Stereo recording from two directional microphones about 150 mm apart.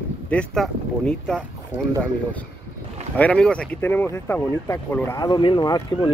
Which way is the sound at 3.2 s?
5° left (ahead or behind).